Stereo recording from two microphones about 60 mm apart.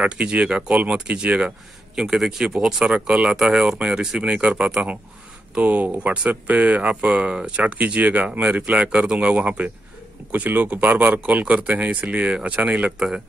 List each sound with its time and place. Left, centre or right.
0.0 s speech: right